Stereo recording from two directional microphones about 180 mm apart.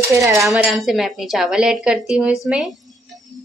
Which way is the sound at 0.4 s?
Centre (ahead or behind).